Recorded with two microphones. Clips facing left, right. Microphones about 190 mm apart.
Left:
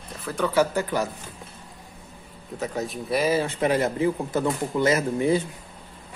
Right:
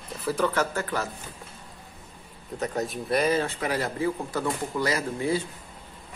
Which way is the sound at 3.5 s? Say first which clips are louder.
Left 6 dB; 20° left (ahead or behind).